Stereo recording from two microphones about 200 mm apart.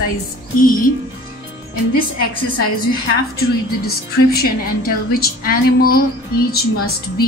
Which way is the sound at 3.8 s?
50° left (ahead or behind).